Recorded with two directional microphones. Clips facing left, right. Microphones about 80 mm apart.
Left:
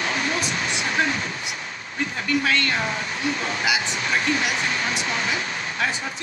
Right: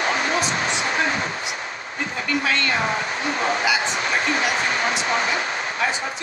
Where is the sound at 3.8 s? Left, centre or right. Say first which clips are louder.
Right 2 dB; right.